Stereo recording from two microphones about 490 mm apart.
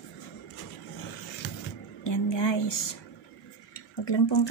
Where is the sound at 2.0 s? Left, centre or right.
Left.